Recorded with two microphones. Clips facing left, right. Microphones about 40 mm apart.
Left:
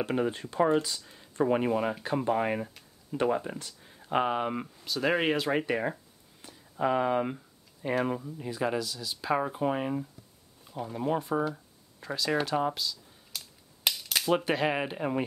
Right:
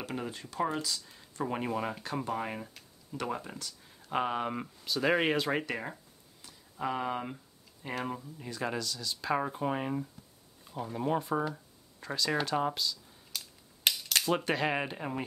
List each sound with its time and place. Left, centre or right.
0.0 s speech: left
0.6 s speech: centre
1.4 s speech: centre
2.2 s speech: left; by 5.7 s centre
5.7 s speech: left
6.4 s a sound: left
6.8 s speech: centre
12.4 s a sound: centre